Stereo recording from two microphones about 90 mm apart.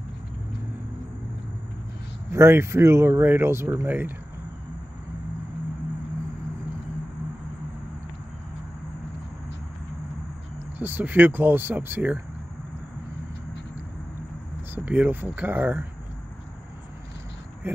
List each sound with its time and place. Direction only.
2.3 s speech: 30° right (ahead or behind)
10.8 s speech: 20° right (ahead or behind)
14.9 s speech: 20° right (ahead or behind)